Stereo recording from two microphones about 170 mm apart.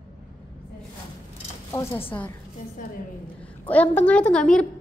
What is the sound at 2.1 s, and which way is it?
Speech, 15° left (ahead or behind).